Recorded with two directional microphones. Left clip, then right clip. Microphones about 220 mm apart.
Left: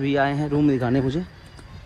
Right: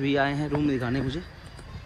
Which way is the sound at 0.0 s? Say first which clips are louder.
Left 3 dB; centre (ahead or behind).